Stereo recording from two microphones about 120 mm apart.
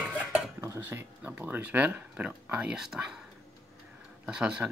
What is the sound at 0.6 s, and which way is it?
Speech, 20° right (ahead or behind).